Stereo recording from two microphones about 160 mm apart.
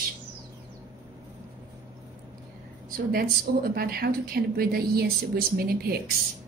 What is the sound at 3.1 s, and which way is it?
A woman's voice, 70° right (ahead or behind).